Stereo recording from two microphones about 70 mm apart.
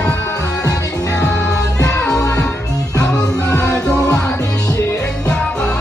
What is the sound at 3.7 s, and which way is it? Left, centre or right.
Music, centre.